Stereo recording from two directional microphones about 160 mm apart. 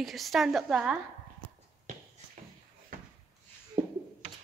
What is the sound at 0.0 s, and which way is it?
Speech, centre (ahead or behind).